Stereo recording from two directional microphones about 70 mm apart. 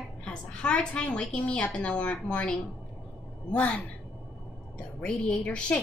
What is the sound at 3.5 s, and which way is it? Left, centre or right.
A woman's voice, centre.